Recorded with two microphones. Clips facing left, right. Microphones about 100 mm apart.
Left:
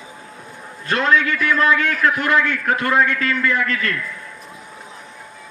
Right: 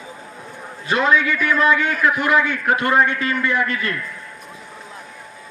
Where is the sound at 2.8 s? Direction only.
25° right (ahead or behind).